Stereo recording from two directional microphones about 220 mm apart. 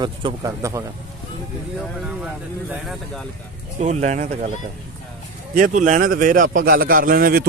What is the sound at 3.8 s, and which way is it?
Speech, 30° right (ahead or behind).